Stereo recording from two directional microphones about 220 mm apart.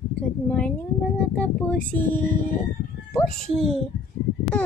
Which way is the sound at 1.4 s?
5° left (ahead or behind).